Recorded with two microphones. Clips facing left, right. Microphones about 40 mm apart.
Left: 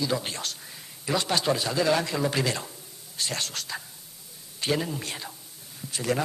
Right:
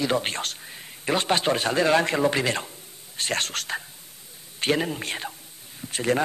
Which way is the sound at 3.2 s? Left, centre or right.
Right.